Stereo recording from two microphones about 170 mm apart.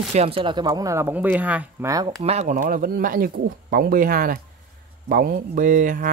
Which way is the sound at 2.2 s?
40° right (ahead or behind).